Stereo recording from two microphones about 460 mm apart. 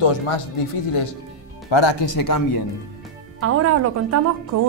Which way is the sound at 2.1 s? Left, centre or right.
Left.